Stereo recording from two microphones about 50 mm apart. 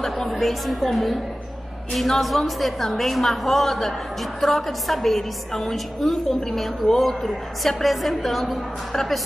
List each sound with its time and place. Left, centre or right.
0.0 s a woman's voice: centre